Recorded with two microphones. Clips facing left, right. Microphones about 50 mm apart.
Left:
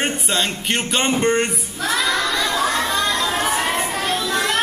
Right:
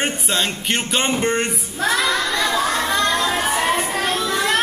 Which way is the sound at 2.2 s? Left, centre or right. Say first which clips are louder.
Right 1 dB; right.